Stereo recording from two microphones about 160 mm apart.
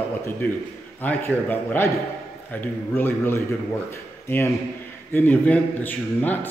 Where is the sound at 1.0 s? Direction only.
10° left (ahead or behind).